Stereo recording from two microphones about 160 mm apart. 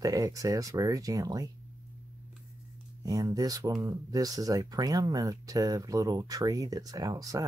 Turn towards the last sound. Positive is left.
turn(degrees=-20)  # may be behind; listen again after turning